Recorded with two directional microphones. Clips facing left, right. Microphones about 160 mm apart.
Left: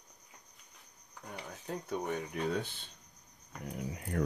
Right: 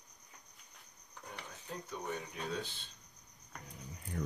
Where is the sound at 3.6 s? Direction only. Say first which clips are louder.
Left 13 dB; 80° left.